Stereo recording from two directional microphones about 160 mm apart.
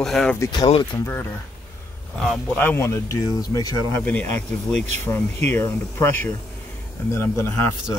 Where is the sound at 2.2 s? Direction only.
5° left (ahead or behind); by 3.9 s 20° left (ahead or behind).